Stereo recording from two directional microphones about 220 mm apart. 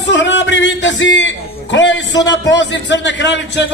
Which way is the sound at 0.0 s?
55° left (ahead or behind).